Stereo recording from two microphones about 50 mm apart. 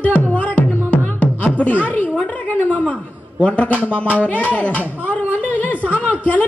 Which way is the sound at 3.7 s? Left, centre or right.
Left.